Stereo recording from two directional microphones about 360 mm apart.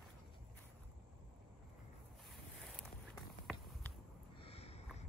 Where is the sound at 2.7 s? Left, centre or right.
Centre.